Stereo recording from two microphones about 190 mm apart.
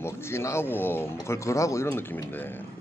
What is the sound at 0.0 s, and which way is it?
Speech, 15° left (ahead or behind).